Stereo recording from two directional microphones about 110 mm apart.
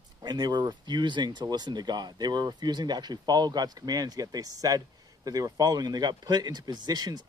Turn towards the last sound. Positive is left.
turn(degrees=-40)  # may be behind; listen again after turning